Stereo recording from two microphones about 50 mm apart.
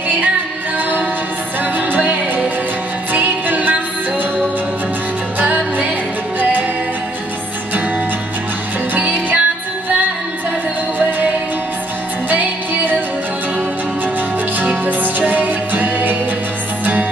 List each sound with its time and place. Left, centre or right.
1.6 s music: right
5.4 s music: right
9.3 s music: right
12.3 s music: right
14.6 s music: right